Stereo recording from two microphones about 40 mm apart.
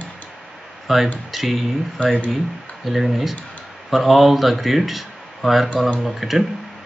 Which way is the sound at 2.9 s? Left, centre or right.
Centre.